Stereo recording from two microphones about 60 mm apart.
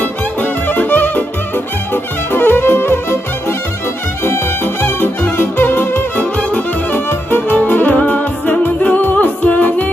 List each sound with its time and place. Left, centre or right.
0.0 s music: left
2.3 s music: left
4.8 s music: left
6.3 s music: left